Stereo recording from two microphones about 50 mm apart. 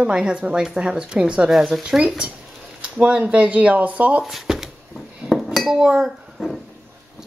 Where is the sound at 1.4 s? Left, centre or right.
Centre.